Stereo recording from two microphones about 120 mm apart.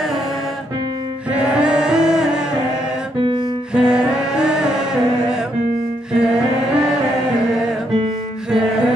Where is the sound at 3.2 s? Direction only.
40° right (ahead or behind).